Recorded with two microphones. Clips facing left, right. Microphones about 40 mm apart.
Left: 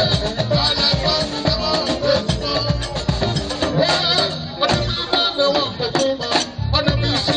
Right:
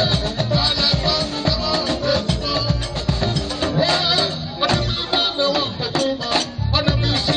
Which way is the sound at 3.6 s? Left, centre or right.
Centre.